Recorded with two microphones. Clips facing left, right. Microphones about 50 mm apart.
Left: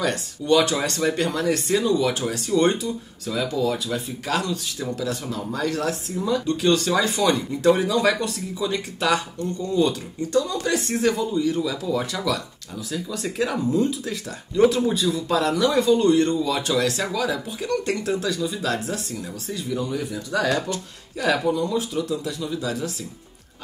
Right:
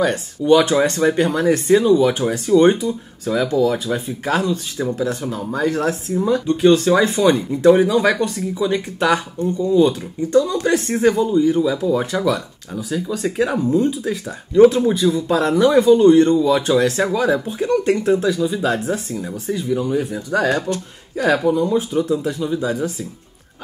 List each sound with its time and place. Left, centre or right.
0.0 s speech: right
3.4 s speech: right
3.7 s speech: right
21.4 s speech: centre
21.6 s speech: right